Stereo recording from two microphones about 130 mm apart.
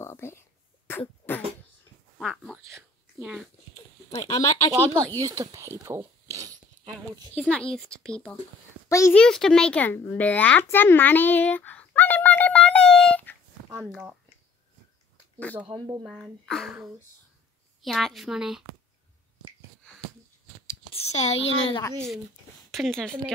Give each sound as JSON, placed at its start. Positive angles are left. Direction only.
{"t": 0.0, "sound": "a sound", "side_deg": 20}
{"t": 2.1, "sound": "a sound", "side_deg": 5}
{"t": 4.1, "sound": "speech", "side_deg": 25}
{"t": 4.7, "sound": "speech", "side_deg": -25}
{"t": 5.2, "sound": "a sound", "side_deg": -25}
{"t": 6.9, "sound": "a woman's voice", "side_deg": 5}
{"t": 8.8, "sound": "a sound", "side_deg": 25}
{"t": 9.1, "sound": "a child's voice", "side_deg": 5}
{"t": 13.7, "sound": "speech", "side_deg": -20}
{"t": 15.3, "sound": "a child's voice", "side_deg": 10}
{"t": 17.8, "sound": "a child's voice", "side_deg": 0}
{"t": 20.9, "sound": "a woman's voice", "side_deg": 55}
{"t": 22.7, "sound": "a child's voice", "side_deg": 0}